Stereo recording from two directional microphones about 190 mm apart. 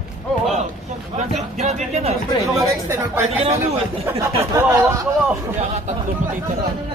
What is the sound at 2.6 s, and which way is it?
Speech, 15° right (ahead or behind).